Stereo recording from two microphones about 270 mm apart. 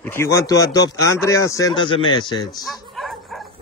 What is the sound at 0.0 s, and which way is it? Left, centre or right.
Speech, centre.